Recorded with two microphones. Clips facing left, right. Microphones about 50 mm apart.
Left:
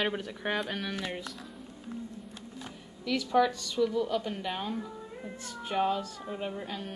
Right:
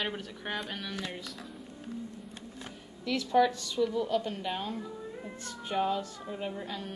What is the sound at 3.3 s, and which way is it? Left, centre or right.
A woman's voice, centre.